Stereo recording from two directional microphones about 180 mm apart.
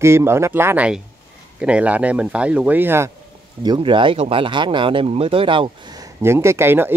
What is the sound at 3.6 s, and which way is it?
Speech, 25° right (ahead or behind).